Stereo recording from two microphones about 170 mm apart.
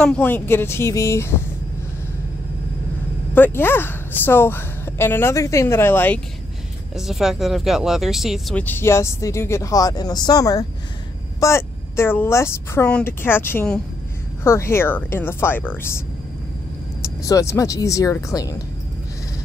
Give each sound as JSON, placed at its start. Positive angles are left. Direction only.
{"t": 0.0, "sound": "speech", "side_deg": 5}
{"t": 3.3, "sound": "speech", "side_deg": 10}
{"t": 7.0, "sound": "speech", "side_deg": 0}
{"t": 17.0, "sound": "speech", "side_deg": 20}